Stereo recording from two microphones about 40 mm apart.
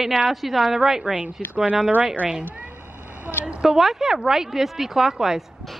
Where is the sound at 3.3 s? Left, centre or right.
Right.